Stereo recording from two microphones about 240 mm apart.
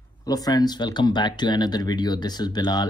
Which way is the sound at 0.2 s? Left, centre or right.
Centre.